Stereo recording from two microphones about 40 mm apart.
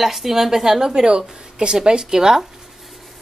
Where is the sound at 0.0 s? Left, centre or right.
Centre.